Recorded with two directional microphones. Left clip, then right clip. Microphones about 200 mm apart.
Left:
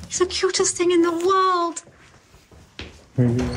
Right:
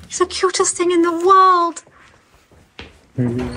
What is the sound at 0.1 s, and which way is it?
Speech, centre (ahead or behind).